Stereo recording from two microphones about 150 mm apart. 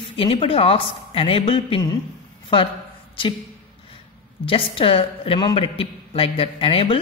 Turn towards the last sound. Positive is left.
turn(degrees=40)  # may be behind; listen again after turning